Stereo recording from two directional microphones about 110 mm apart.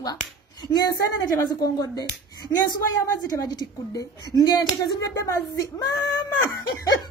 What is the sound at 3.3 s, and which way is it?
Speech, 35° left (ahead or behind).